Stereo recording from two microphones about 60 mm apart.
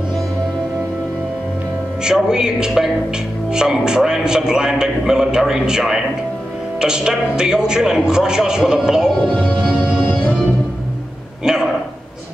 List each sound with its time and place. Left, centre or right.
2.0 s a man's voice: centre
9.2 s speech: left